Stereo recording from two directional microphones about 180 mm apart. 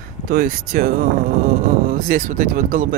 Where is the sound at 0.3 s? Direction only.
55° right (ahead or behind).